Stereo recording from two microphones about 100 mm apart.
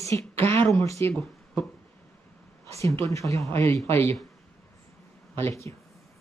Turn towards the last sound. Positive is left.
turn(degrees=25)  # may be behind; listen again after turning